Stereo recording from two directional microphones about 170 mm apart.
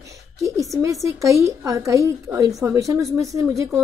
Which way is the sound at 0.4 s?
20° right (ahead or behind).